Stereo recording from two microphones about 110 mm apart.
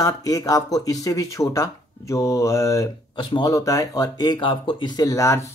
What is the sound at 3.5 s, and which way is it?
Speech, 30° left (ahead or behind).